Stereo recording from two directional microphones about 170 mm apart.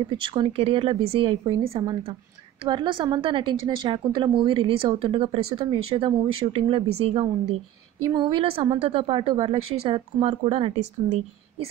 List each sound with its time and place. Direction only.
0.1 s a woman's voice: 30° right (ahead or behind)